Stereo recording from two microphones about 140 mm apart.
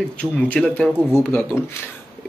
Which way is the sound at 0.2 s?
10° left (ahead or behind).